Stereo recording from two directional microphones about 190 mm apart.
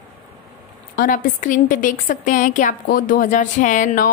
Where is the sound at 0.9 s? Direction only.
45° left (ahead or behind).